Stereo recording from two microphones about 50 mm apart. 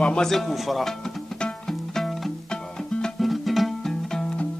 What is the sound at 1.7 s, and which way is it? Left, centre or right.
Music, centre.